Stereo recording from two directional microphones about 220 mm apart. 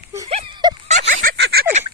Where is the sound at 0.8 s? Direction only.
35° right (ahead or behind).